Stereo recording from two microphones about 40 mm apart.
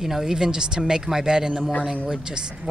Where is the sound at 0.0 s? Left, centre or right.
Centre.